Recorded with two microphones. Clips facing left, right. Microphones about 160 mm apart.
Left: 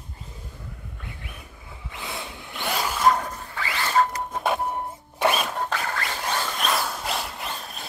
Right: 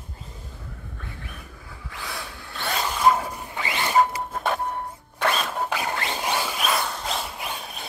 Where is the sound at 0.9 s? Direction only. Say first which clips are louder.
Right 1 dB; 15° left (ahead or behind).